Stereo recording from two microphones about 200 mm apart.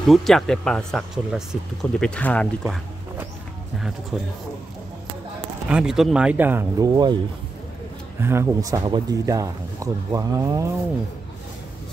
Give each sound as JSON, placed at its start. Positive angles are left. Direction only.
{"t": 0.0, "sound": "speech", "side_deg": 0}
{"t": 4.1, "sound": "speech", "side_deg": 0}
{"t": 5.7, "sound": "speech", "side_deg": -5}
{"t": 8.2, "sound": "speech", "side_deg": -10}